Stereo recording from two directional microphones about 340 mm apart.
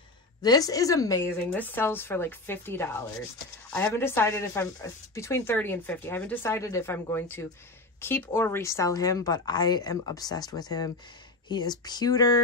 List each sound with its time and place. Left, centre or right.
0.4 s speech: centre